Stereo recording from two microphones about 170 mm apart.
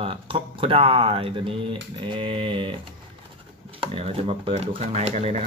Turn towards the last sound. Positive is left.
turn(degrees=-40)  # may be behind; listen again after turning